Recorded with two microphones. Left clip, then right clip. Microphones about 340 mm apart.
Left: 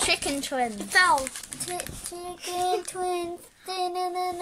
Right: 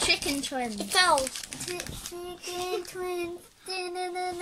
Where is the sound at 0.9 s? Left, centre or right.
Centre.